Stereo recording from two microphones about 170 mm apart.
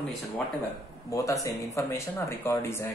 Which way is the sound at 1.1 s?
20° left (ahead or behind).